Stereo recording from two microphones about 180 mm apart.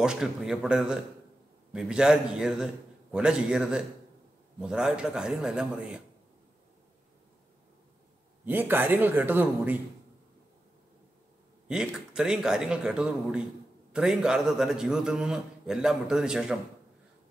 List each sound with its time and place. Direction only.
0.0 s a man's voice: 5° right (ahead or behind)
8.5 s speech: 10° right (ahead or behind)
11.6 s a man's voice: 5° right (ahead or behind)